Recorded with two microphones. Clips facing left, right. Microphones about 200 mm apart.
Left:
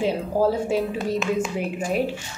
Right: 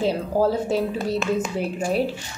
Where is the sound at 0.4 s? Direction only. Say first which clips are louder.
Even; 10° left (ahead or behind).